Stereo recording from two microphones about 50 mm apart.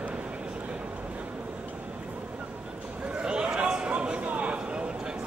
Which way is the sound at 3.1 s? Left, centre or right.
Right.